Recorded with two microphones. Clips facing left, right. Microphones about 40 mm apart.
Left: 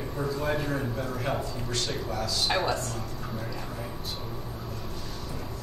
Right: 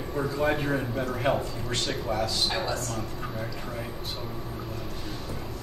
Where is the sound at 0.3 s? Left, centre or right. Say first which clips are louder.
Right 3 dB; right.